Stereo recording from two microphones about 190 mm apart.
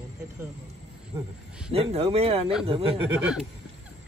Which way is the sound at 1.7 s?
30° right (ahead or behind).